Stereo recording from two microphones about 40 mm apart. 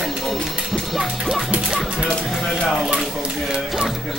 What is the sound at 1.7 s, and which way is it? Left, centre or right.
Speech, centre.